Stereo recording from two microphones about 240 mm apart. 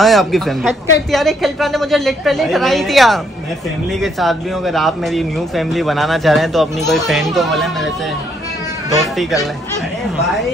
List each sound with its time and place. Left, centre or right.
0.0 s speech: centre
9.0 s speech: centre